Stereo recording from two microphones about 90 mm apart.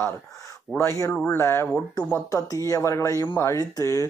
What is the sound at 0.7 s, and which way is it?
Speech, 30° left (ahead or behind).